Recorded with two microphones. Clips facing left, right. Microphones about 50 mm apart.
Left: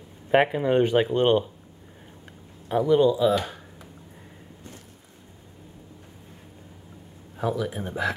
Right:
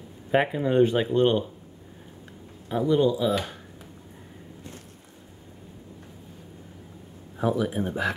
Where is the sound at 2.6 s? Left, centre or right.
Left.